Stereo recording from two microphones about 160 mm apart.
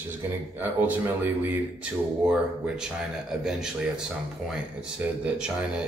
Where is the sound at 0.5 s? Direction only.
10° right (ahead or behind).